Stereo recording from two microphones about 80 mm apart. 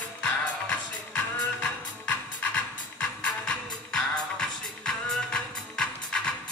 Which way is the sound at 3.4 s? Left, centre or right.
Centre.